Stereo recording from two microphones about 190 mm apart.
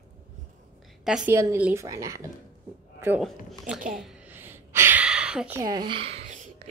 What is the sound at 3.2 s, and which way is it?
Speech, centre (ahead or behind).